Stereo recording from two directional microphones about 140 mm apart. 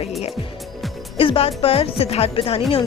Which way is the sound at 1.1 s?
40° left (ahead or behind).